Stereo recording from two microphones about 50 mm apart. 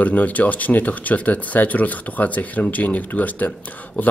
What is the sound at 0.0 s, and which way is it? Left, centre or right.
A man's voice, left.